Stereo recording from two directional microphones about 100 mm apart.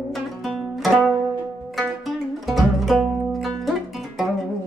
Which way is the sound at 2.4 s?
Centre (ahead or behind).